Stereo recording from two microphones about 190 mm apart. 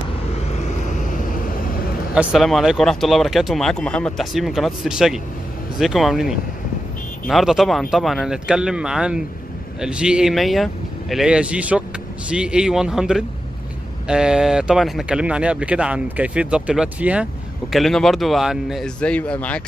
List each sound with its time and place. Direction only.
0.8 s vehicle: 40° left (ahead or behind)
2.1 s speech: centre (ahead or behind)